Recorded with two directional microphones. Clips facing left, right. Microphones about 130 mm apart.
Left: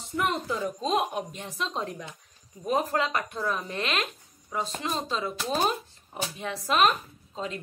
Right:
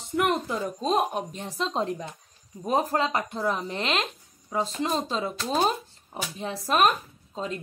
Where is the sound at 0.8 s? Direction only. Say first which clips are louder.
Right 4 dB; 40° right (ahead or behind).